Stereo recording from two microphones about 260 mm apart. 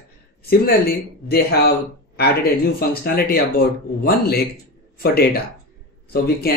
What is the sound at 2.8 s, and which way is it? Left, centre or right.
Speech, left.